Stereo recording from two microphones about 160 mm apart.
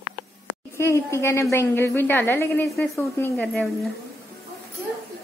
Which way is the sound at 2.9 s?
20° left (ahead or behind).